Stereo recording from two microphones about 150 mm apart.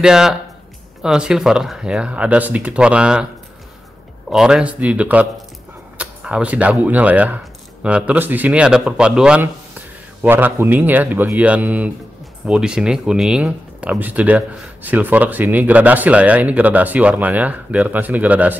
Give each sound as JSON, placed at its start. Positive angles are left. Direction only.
{"t": 0.0, "sound": "speech", "side_deg": -5}
{"t": 4.3, "sound": "speech", "side_deg": -5}